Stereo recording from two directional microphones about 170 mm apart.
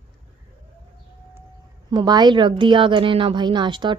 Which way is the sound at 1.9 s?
25° right (ahead or behind).